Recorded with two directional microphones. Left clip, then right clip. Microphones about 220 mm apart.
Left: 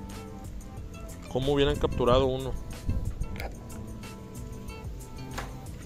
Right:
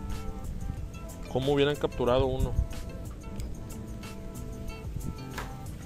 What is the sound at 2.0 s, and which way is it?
Speech, 10° left (ahead or behind).